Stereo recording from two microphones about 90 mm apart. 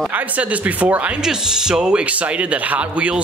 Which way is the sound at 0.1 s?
15° right (ahead or behind).